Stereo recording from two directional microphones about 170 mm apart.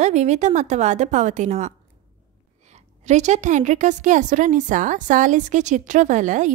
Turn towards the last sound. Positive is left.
turn(degrees=-45)  # may be behind; listen again after turning